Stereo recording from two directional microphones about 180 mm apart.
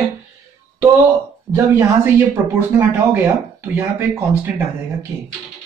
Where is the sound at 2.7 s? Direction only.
15° right (ahead or behind).